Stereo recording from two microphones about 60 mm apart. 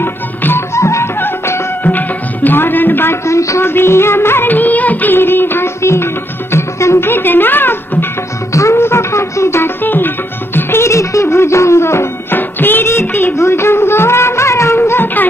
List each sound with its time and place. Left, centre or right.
0.0 s music: left
0.7 s music: left
1.9 s music: left
3.3 s speech: left
3.6 s music of bollywood: left
6.5 s music: left
8.5 s music: left
9.8 s music: left
12.4 s music: left